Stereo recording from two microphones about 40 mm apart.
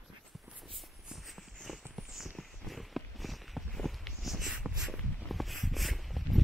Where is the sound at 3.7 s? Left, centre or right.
Centre.